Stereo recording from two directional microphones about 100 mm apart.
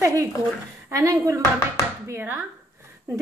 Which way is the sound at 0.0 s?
30° right (ahead or behind).